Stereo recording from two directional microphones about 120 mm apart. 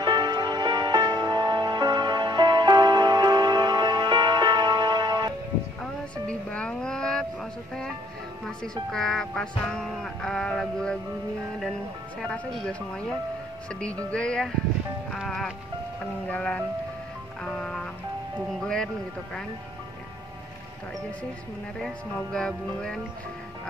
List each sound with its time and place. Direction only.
0.0 s music: 35° right (ahead or behind)
5.8 s a sound: 10° left (ahead or behind)
8.5 s speech: 5° left (ahead or behind)
12.2 s speech: 5° left (ahead or behind)
13.7 s music: 10° left (ahead or behind)
15.1 s speech: 5° left (ahead or behind)
16.3 s music: 10° left (ahead or behind)
17.4 s speech: 5° left (ahead or behind)
21.8 s music: 5° left (ahead or behind)